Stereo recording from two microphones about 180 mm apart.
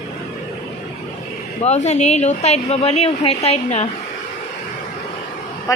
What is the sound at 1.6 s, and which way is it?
A woman's voice, 40° left (ahead or behind).